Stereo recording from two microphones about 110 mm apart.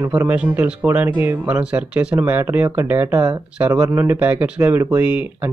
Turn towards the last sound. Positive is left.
turn(degrees=-15)  # may be behind; listen again after turning